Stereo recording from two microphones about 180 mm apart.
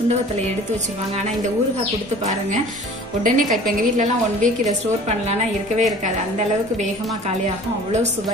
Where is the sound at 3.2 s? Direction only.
45° right (ahead or behind).